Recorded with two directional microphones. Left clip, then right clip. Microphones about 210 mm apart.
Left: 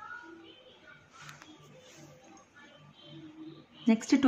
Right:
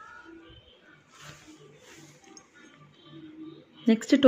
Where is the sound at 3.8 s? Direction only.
15° right (ahead or behind).